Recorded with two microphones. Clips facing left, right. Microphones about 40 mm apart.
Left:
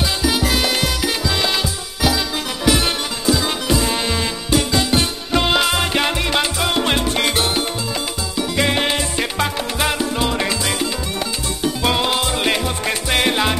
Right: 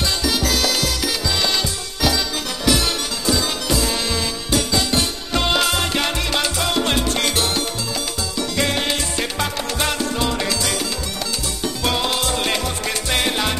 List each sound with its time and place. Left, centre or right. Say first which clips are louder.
0.0 s music: left 2 dB; centre